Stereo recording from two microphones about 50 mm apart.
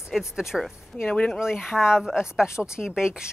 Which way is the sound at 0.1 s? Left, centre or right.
Centre.